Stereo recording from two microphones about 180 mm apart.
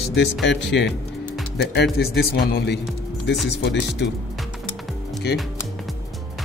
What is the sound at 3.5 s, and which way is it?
Speech, 70° left (ahead or behind).